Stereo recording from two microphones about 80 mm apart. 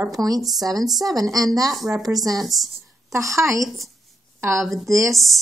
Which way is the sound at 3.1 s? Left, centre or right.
Right.